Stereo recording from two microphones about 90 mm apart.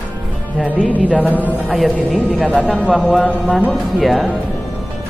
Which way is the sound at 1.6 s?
Centre (ahead or behind).